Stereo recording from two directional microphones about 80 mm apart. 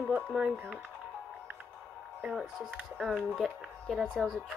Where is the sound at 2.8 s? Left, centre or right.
Centre.